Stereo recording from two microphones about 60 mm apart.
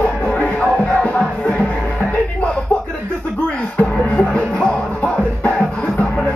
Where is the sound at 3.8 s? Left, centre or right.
Left.